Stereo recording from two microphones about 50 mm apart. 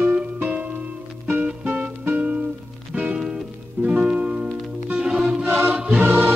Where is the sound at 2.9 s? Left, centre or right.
Right.